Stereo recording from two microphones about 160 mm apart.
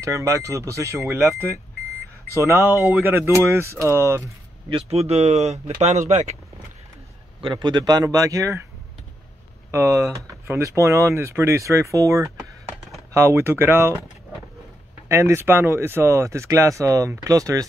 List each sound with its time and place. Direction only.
0.0 s speech: 20° right (ahead or behind)
4.6 s speech: 40° right (ahead or behind)
7.4 s speech: 30° right (ahead or behind)
9.7 s speech: 15° right (ahead or behind)
15.0 s speech: 15° right (ahead or behind)